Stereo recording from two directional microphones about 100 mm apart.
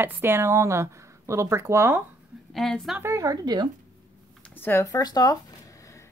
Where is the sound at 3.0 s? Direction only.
30° right (ahead or behind).